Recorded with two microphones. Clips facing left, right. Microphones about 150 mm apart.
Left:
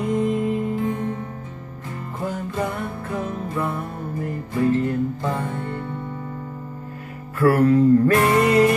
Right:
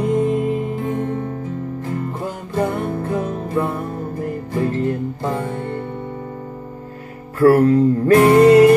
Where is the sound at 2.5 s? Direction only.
40° right (ahead or behind).